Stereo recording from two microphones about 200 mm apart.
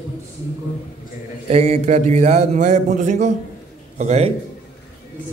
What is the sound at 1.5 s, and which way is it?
Speech, 30° right (ahead or behind).